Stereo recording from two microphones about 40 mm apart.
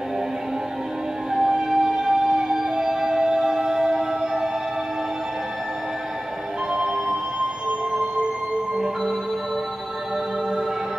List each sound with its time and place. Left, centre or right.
1.3 s music: centre
6.7 s music: centre